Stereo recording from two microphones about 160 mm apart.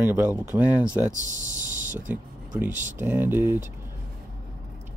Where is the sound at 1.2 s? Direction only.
50° right (ahead or behind).